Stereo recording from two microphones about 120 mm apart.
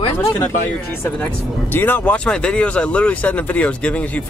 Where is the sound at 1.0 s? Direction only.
15° left (ahead or behind).